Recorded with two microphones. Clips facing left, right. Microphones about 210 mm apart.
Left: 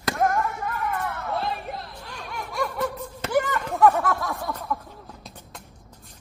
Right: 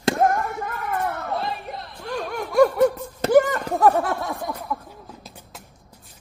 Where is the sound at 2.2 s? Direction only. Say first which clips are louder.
Right 12 dB; 50° right (ahead or behind); by 4.5 s 25° right (ahead or behind).